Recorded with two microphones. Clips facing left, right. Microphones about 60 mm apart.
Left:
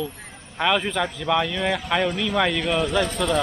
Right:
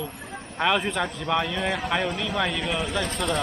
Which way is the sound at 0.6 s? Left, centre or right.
Centre.